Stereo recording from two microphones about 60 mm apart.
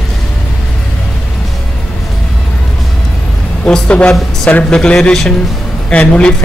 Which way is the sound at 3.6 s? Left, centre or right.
Centre.